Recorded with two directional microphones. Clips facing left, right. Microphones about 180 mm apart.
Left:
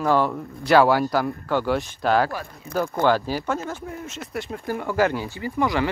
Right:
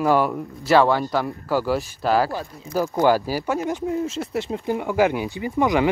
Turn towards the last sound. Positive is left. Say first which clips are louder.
# right 3 dB
turn(degrees=-20)  # may be behind; listen again after turning